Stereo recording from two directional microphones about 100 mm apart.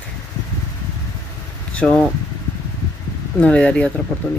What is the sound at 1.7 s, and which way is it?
Speech, 10° left (ahead or behind).